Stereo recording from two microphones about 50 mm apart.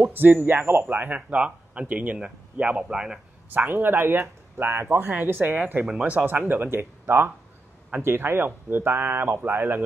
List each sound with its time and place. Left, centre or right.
0.1 s a man's voice: right
2.8 s a man's voice: centre
3.5 s speech: right